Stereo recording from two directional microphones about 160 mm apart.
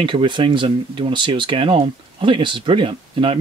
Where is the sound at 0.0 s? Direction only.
30° right (ahead or behind).